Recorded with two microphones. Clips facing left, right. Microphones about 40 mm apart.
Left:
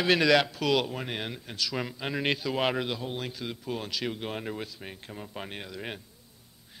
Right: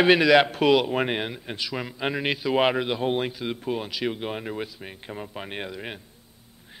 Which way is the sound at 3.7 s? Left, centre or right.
Centre.